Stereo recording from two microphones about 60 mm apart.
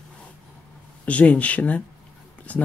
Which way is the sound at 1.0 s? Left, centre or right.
Left.